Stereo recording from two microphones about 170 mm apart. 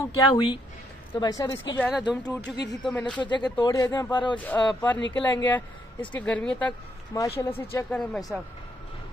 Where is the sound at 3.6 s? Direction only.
20° left (ahead or behind).